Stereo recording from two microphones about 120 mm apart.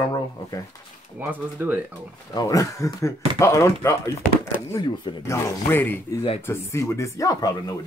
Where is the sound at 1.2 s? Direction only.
15° right (ahead or behind).